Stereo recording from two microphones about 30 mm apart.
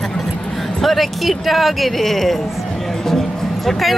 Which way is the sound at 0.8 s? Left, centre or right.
Centre.